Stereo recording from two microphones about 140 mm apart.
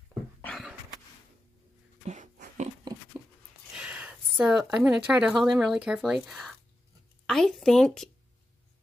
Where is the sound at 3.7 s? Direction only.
10° right (ahead or behind).